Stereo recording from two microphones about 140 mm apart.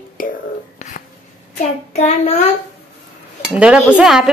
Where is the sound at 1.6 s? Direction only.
55° left (ahead or behind).